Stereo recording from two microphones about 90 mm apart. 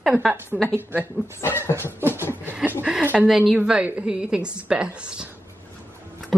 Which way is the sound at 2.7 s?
25° right (ahead or behind).